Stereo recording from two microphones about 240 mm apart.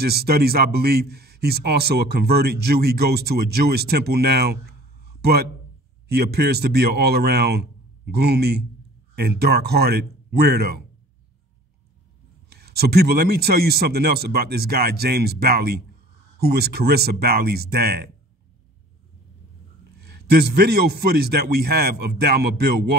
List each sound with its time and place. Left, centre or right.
0.0 s a man's voice: right
12.4 s a man's voice: right
20.0 s a man's voice: right